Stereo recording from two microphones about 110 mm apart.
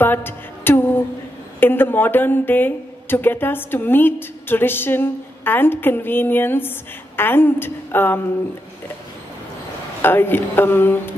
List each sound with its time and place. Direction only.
0.0 s a woman's voice: 20° left (ahead or behind)
10.0 s a woman's voice: 20° left (ahead or behind)